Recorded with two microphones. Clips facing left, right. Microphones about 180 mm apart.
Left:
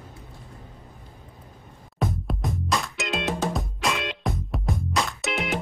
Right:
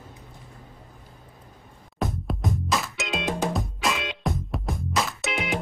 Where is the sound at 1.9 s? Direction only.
Centre (ahead or behind).